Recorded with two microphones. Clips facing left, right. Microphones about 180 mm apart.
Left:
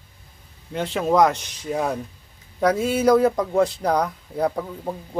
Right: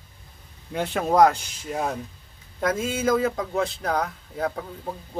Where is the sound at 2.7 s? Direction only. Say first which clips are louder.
Left 6 dB; 70° left (ahead or behind).